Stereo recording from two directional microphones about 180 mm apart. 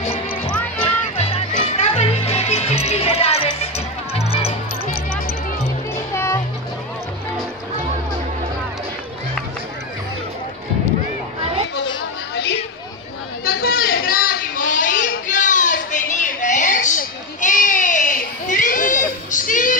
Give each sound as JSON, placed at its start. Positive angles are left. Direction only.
{"t": 0.0, "sound": "basketball bounce", "side_deg": 30}
{"t": 0.5, "sound": "basketball bounce", "side_deg": 10}
{"t": 0.8, "sound": "music", "side_deg": 35}
{"t": 6.1, "sound": "music", "side_deg": 15}
{"t": 13.5, "sound": "a sound", "side_deg": 55}